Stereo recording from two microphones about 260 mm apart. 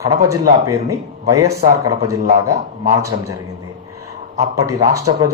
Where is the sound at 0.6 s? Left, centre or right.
Centre.